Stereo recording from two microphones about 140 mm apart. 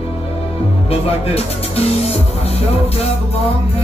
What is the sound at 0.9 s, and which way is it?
Speech, 45° left (ahead or behind).